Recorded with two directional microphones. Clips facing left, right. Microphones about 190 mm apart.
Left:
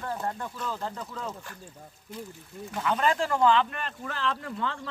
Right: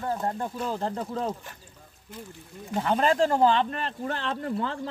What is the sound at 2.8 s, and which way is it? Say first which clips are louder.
Speech: right 4 dB; 35° right (ahead or behind).